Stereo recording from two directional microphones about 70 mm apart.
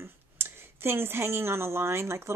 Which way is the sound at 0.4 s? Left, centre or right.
Right.